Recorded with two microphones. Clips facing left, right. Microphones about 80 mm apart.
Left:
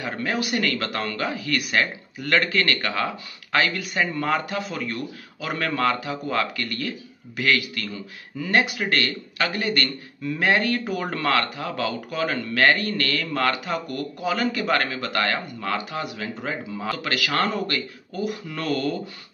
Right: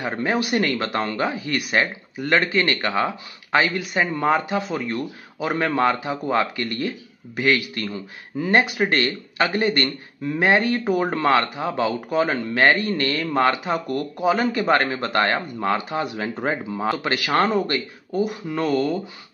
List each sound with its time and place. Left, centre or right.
0.0 s speech: right